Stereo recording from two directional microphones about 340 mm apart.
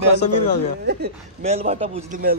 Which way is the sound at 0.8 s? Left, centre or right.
Right.